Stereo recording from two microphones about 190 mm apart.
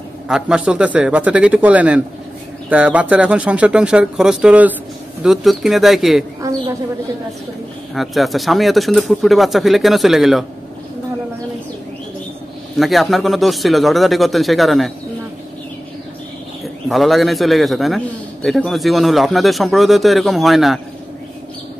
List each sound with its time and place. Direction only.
0.3 s a man's voice: 5° right (ahead or behind)
6.4 s a sound: 15° right (ahead or behind)
7.9 s a man's voice: centre (ahead or behind)
12.7 s a man's voice: centre (ahead or behind)
16.6 s a man's voice: centre (ahead or behind)